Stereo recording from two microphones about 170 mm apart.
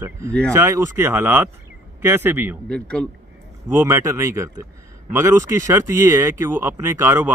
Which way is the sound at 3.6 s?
15° right (ahead or behind).